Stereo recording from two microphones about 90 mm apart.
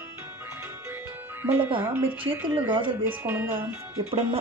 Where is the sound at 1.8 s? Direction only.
25° right (ahead or behind).